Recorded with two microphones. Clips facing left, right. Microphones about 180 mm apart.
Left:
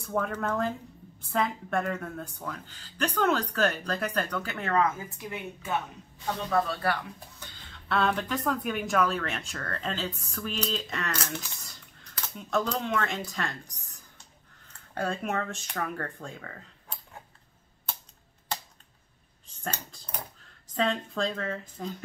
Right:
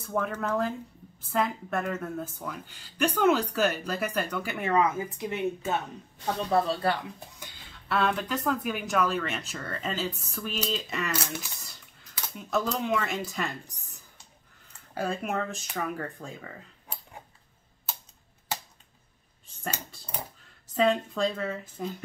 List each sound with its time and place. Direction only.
0.0 s a woman's voice: 5° right (ahead or behind); by 7.0 s 25° right (ahead or behind)
7.9 s speech: centre (ahead or behind)
14.7 s speech: 5° right (ahead or behind)
19.6 s speech: 5° right (ahead or behind)